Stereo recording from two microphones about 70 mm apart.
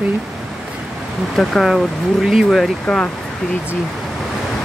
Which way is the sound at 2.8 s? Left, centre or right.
Centre.